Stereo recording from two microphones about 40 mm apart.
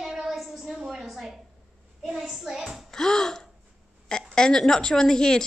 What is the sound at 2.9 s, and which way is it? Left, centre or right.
A woman's voice, centre.